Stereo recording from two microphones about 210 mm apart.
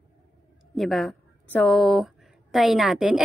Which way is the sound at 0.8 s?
Centre (ahead or behind).